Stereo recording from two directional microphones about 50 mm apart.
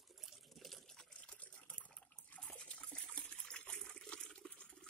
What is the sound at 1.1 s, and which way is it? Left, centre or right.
Water, left.